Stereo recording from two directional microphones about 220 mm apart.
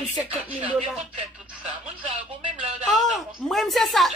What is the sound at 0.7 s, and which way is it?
Speech, 25° right (ahead or behind).